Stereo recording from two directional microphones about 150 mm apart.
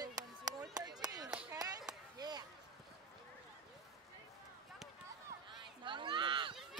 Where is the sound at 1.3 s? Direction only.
10° right (ahead or behind).